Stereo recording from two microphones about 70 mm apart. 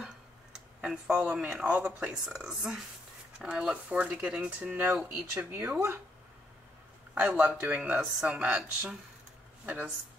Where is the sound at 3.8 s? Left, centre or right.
Centre.